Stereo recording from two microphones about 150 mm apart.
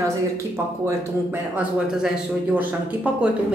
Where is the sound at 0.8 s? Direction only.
15° right (ahead or behind).